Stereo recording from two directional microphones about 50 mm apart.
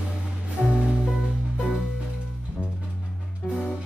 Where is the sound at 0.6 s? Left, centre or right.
Centre.